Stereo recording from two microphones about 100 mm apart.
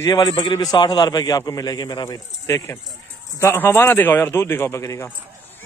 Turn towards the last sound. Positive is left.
turn(degrees=30)  # may be behind; listen again after turning